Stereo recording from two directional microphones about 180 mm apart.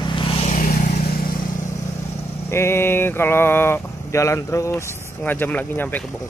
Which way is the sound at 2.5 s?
15° left (ahead or behind).